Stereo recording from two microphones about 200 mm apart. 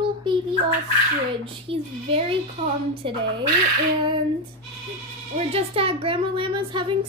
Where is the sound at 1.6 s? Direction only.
25° right (ahead or behind).